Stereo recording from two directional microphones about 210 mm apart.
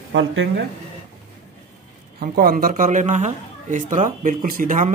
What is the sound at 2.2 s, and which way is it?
A man's voice, 45° right (ahead or behind).